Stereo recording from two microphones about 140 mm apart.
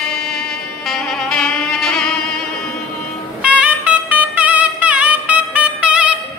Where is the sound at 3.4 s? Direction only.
10° right (ahead or behind).